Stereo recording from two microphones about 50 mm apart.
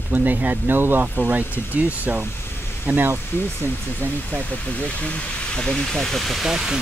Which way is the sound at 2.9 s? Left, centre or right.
Right.